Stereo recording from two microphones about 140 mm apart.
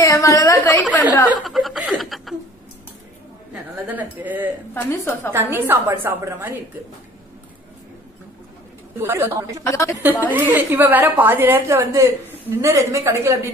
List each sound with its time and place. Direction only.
0.0 s a woman's voice: 25° left (ahead or behind)
1.4 s speech: centre (ahead or behind)
3.8 s a woman's voice: 10° right (ahead or behind)
4.7 s a woman's voice: 15° left (ahead or behind)
5.3 s a woman's voice: 15° right (ahead or behind)
9.0 s a woman's voice: 15° right (ahead or behind)
9.6 s a woman's voice: 20° left (ahead or behind)
10.0 s a woman's voice: 15° right (ahead or behind)